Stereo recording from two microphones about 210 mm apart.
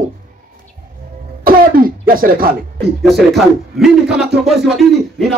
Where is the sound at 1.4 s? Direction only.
40° right (ahead or behind).